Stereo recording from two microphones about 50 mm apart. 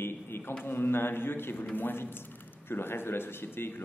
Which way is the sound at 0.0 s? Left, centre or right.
Left.